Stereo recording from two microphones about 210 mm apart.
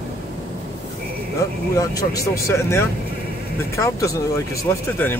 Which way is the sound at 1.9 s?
15° left (ahead or behind).